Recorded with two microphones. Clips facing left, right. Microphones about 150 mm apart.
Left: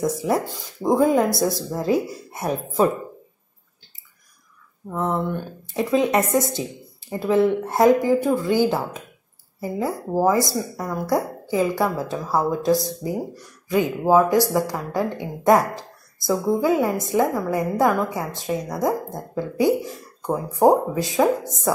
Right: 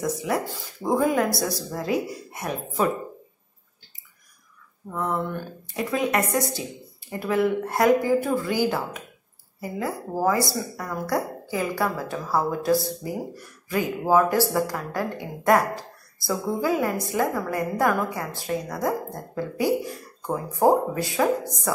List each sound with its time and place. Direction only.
0.0 s speech: 30° left (ahead or behind)
0.5 s speech: 20° left (ahead or behind)
4.9 s a woman's voice: 25° left (ahead or behind)
19.6 s speech: centre (ahead or behind)
20.2 s speech: 20° left (ahead or behind)